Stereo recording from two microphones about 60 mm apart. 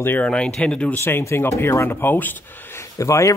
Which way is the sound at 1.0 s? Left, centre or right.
Left.